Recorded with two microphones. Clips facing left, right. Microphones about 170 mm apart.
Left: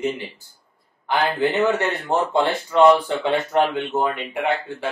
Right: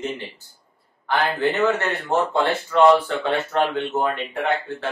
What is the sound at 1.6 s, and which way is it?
Speech, 15° left (ahead or behind).